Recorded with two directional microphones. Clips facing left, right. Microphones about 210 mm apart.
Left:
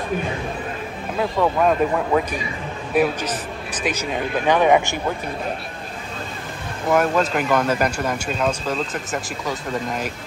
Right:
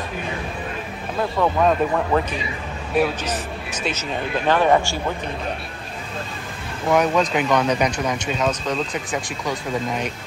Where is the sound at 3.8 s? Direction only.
10° left (ahead or behind).